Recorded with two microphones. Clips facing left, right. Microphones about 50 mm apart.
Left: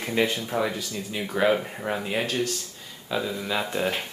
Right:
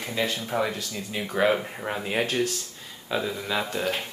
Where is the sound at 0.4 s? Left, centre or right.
Centre.